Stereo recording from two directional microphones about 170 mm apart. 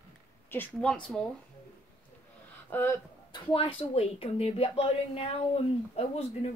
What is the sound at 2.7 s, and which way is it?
Speech, 10° left (ahead or behind).